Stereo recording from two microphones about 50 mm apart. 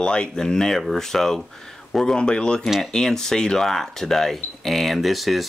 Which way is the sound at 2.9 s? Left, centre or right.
Centre.